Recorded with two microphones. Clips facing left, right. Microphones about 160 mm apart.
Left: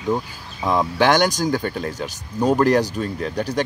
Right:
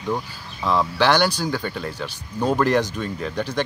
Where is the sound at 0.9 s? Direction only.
45° left (ahead or behind).